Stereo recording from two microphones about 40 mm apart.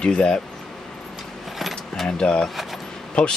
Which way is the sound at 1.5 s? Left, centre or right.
Centre.